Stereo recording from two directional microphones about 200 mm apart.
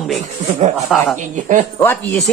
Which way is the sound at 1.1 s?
40° right (ahead or behind).